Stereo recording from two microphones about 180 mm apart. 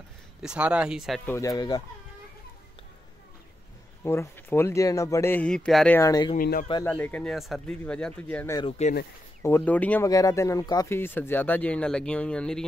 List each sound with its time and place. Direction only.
0.4 s speech: 5° right (ahead or behind)
1.2 s speech: 15° left (ahead or behind)
4.0 s speech: 15° left (ahead or behind)
5.9 s speech: 20° left (ahead or behind)
6.3 s a man's voice: 55° left (ahead or behind)
6.8 s speech: 10° left (ahead or behind)
8.5 s speech: 35° left (ahead or behind)
9.4 s speech: 10° left (ahead or behind)
10.0 s speech: 20° left (ahead or behind)